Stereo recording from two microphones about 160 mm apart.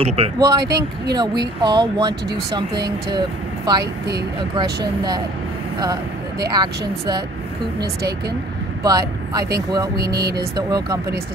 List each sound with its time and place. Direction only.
0.0 s speech: 35° right (ahead or behind)
0.4 s speech: 25° right (ahead or behind)
0.7 s speech: 90° right
1.4 s speech: 25° right (ahead or behind)
6.5 s speech: 25° right (ahead or behind)
8.8 s speech: 25° right (ahead or behind)
10.5 s speech: 25° right (ahead or behind)